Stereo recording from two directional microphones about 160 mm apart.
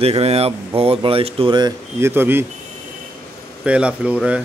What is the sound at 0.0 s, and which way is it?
Speech, 40° right (ahead or behind).